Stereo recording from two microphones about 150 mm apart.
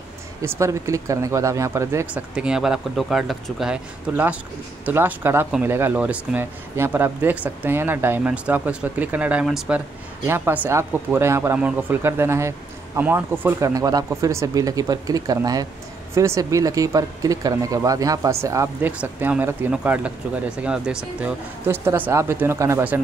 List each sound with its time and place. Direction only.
0.4 s speech: 20° right (ahead or behind)
2.3 s speech: 5° right (ahead or behind)